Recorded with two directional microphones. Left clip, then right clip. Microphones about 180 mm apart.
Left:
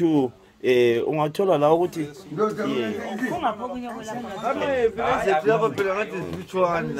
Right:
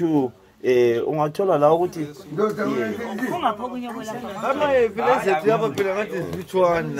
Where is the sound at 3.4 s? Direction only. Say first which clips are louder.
Right 3 dB; 5° right (ahead or behind).